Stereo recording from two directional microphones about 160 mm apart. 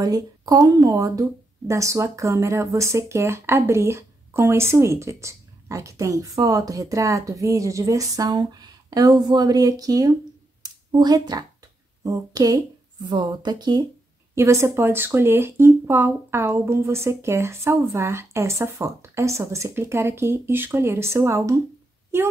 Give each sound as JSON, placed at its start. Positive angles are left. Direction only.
{"t": 0.0, "sound": "speech", "side_deg": -25}
{"t": 10.6, "sound": "a sound", "side_deg": -25}
{"t": 12.0, "sound": "a child's voice", "side_deg": -20}